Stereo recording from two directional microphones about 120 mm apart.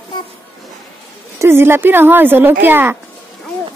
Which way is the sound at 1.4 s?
20° right (ahead or behind).